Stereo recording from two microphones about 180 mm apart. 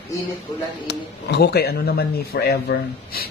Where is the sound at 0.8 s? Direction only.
65° left (ahead or behind).